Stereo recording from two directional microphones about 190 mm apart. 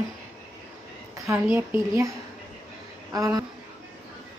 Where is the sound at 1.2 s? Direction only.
10° right (ahead or behind).